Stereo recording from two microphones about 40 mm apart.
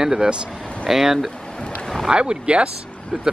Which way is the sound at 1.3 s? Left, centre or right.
Left.